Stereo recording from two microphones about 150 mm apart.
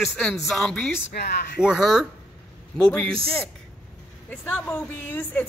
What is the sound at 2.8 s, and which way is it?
Speech, 10° left (ahead or behind).